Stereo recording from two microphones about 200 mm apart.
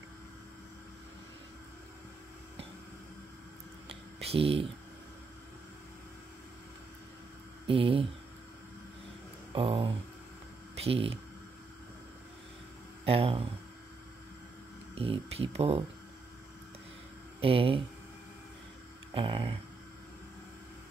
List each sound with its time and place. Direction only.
3.9 s a sound: 30° right (ahead or behind)
7.6 s speech: 25° right (ahead or behind)
9.5 s speech: 25° right (ahead or behind)
13.0 s speech: 30° right (ahead or behind)
15.0 s speech: 30° right (ahead or behind)
17.4 s speech: 25° right (ahead or behind)
19.1 s speech: 25° right (ahead or behind)